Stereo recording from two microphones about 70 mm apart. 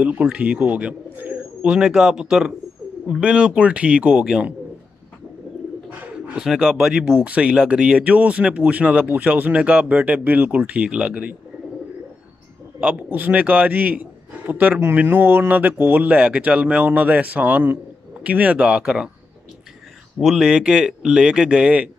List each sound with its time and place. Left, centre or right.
0.0 s speech: centre
1.6 s speech: centre
5.9 s bird: centre
6.4 s speech: centre; by 11.3 s right
12.8 s speech: centre
20.2 s speech: centre